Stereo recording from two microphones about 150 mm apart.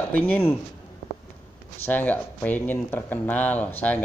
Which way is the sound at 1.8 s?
10° left (ahead or behind).